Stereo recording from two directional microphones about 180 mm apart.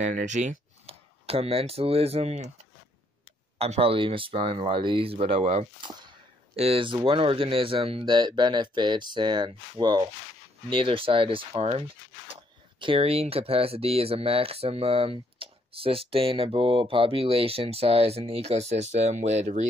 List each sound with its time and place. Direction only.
0.0 s speech: 40° right (ahead or behind)
3.5 s speech: 35° right (ahead or behind)
5.9 s speech: 25° right (ahead or behind)